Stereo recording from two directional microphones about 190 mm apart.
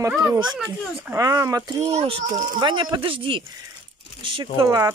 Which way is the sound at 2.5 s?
25° right (ahead or behind).